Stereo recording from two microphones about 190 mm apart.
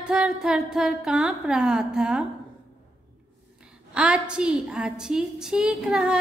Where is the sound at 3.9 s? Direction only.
5° right (ahead or behind).